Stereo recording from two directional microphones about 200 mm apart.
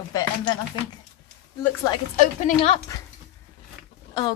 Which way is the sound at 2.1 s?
35° left (ahead or behind).